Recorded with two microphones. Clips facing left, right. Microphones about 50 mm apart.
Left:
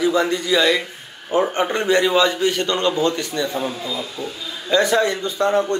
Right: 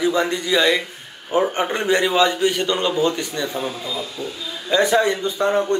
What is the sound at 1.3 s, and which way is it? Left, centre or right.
A man's voice, right.